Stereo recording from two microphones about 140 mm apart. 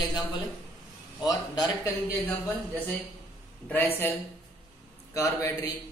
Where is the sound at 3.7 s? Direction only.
15° left (ahead or behind).